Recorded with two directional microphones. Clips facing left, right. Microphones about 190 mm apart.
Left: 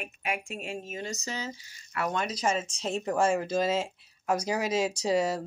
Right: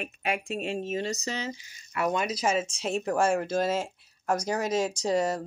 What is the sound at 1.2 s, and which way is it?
Speech, 70° right (ahead or behind).